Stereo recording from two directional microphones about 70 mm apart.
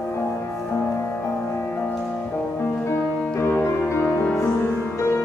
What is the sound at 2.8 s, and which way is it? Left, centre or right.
Music, left.